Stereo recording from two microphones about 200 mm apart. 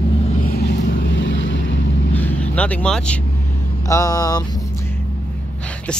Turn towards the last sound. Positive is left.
turn(degrees=5)  # may be behind; listen again after turning